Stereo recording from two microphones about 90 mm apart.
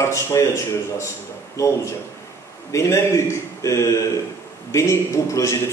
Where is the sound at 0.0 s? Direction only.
35° left (ahead or behind).